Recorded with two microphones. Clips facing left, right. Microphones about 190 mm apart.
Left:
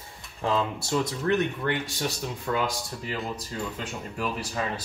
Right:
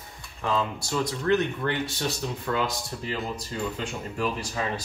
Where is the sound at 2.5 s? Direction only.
10° left (ahead or behind).